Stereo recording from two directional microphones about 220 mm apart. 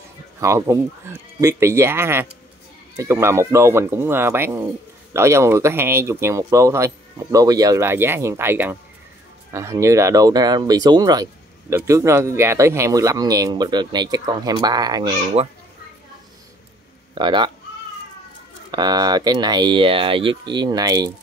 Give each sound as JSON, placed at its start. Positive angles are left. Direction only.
{"t": 0.4, "sound": "speech", "side_deg": -15}
{"t": 17.2, "sound": "speech", "side_deg": -20}
{"t": 18.7, "sound": "speech", "side_deg": -20}